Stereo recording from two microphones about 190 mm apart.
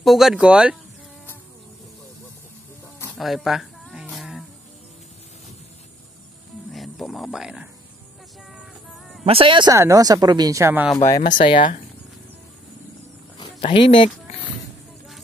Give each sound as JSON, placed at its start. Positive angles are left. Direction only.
{"t": 0.0, "sound": "speech", "side_deg": 0}
{"t": 3.2, "sound": "a sound", "side_deg": 0}
{"t": 6.7, "sound": "speech", "side_deg": 0}
{"t": 9.2, "sound": "speech", "side_deg": -30}
{"t": 11.3, "sound": "speech", "side_deg": 25}
{"t": 13.4, "sound": "speech", "side_deg": 25}